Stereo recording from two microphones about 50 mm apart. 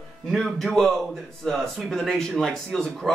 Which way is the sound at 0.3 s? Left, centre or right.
Centre.